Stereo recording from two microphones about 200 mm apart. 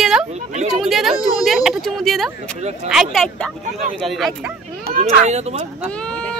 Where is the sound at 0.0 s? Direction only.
5° right (ahead or behind).